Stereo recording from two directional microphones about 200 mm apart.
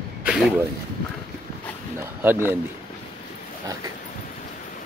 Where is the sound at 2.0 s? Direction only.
10° right (ahead or behind).